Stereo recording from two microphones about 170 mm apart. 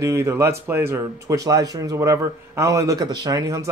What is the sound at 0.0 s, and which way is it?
Speech, 15° right (ahead or behind).